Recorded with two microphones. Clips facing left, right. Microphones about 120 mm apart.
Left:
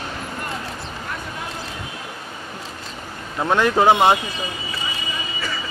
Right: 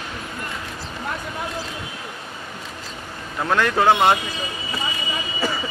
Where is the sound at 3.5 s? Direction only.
15° left (ahead or behind).